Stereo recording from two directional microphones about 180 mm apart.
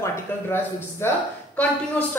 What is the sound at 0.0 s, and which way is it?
Speech, 15° left (ahead or behind).